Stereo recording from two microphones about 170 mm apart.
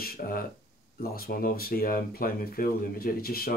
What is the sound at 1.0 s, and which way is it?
Speech, 60° left (ahead or behind).